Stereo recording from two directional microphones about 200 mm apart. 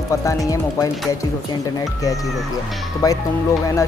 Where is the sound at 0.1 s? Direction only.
15° left (ahead or behind).